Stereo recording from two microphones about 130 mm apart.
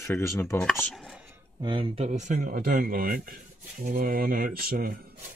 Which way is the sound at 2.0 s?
65° right (ahead or behind).